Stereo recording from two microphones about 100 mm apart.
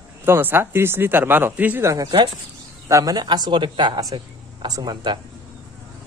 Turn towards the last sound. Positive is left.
turn(degrees=-45)  # may be behind; listen again after turning